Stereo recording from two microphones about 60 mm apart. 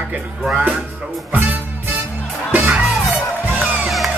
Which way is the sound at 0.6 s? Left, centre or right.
Centre.